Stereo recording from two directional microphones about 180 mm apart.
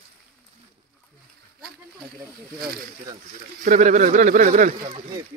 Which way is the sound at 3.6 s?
45° right (ahead or behind).